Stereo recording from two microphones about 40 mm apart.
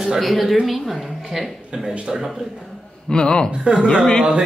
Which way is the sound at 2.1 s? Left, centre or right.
Centre.